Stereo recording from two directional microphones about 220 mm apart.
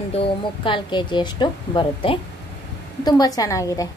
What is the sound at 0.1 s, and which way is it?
A woman's voice, 25° left (ahead or behind).